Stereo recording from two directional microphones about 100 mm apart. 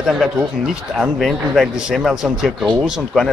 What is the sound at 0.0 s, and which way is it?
A man's voice, 5° right (ahead or behind).